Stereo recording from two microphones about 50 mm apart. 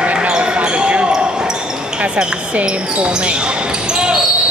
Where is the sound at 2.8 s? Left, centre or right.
Centre.